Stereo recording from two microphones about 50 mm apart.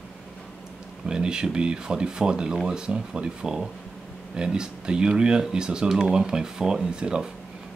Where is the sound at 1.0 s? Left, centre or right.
Centre.